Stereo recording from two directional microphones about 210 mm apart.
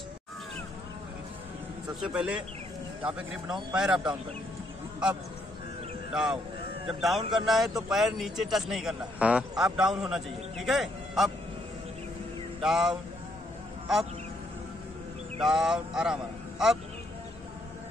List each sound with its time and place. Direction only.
2.0 s a man's voice: 5° right (ahead or behind)
6.1 s a man's voice: centre (ahead or behind)
12.6 s a man's voice: centre (ahead or behind)
15.4 s a man's voice: centre (ahead or behind)